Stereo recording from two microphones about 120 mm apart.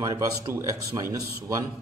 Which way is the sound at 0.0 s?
25° right (ahead or behind).